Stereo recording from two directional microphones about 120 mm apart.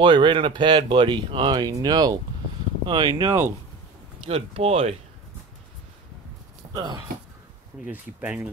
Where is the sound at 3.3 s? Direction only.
25° right (ahead or behind).